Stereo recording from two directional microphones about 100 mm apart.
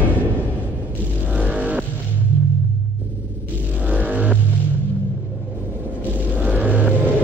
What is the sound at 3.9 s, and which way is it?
Music, 15° right (ahead or behind).